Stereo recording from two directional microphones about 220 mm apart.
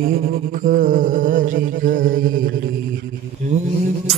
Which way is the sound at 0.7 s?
40° right (ahead or behind).